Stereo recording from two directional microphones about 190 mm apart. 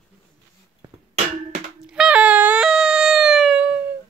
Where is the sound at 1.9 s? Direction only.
5° right (ahead or behind).